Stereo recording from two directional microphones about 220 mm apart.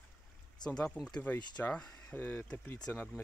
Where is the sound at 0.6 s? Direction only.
5° left (ahead or behind).